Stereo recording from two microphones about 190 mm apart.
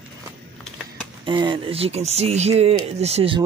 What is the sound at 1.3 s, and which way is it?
Speech, 25° right (ahead or behind).